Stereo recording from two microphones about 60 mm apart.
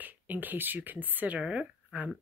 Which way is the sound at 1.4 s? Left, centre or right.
Centre.